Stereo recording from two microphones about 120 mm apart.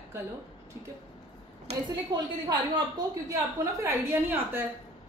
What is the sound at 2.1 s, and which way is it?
Speech, 35° right (ahead or behind).